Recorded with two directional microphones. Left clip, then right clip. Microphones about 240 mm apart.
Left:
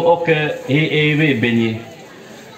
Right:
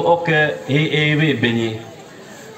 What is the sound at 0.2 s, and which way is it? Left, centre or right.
A man's voice, right.